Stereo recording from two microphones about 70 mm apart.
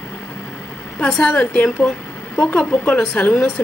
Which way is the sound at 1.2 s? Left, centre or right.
Centre.